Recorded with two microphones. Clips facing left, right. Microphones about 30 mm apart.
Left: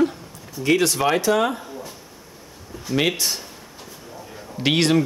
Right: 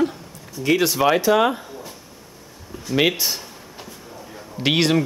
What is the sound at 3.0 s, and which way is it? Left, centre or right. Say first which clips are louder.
Speech: right 2 dB; centre.